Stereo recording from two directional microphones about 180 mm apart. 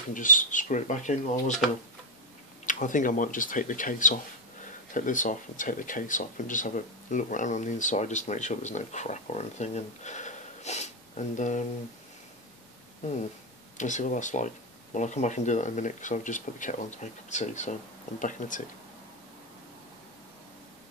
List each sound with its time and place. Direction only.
0.1 s speech: 45° left (ahead or behind)
2.6 s speech: 45° left (ahead or behind)
13.7 s speech: 45° left (ahead or behind)